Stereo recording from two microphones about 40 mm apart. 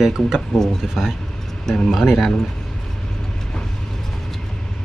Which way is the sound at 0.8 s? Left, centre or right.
Centre.